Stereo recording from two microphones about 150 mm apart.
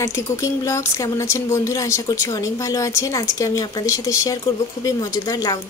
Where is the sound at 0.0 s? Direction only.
20° left (ahead or behind).